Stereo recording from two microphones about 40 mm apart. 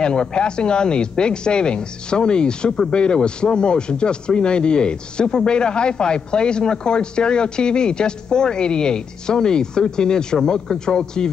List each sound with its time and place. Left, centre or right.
0.0 s speech: left